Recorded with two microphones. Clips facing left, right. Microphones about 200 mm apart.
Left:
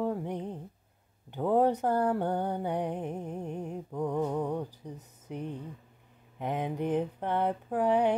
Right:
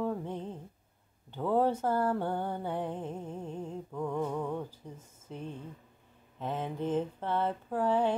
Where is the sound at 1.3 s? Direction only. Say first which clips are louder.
Left 3 dB; 15° left (ahead or behind).